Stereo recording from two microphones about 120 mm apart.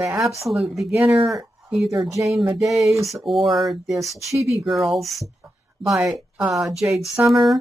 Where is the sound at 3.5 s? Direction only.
Centre (ahead or behind).